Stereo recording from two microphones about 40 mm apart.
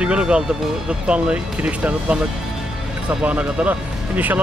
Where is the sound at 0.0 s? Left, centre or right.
Right.